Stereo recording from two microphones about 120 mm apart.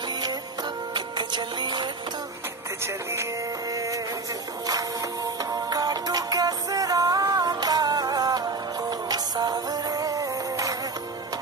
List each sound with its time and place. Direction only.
0.9 s music: 40° right (ahead or behind)
3.7 s music: 30° right (ahead or behind)